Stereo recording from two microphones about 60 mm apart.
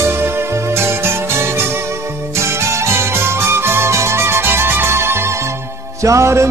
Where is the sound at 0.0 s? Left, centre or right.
Right.